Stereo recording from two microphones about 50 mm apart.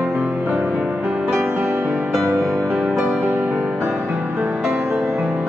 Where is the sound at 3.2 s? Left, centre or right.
Right.